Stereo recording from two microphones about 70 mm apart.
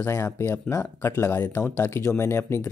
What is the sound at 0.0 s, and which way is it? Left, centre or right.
Speech, left.